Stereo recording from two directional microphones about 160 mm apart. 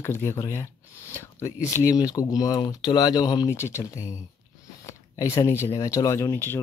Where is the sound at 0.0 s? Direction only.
15° left (ahead or behind).